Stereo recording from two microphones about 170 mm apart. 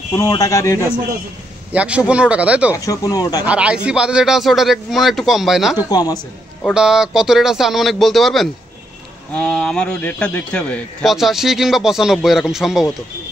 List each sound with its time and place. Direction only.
0.1 s a man's voice: 20° left (ahead or behind)
1.7 s speech: 5° right (ahead or behind)
2.7 s a man's voice: 20° left (ahead or behind)
3.4 s a man's voice: 5° right (ahead or behind)
5.8 s a man's voice: 25° left (ahead or behind)
6.1 s a man's voice: centre (ahead or behind)